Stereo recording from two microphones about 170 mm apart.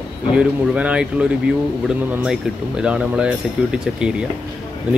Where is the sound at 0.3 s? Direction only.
5° right (ahead or behind).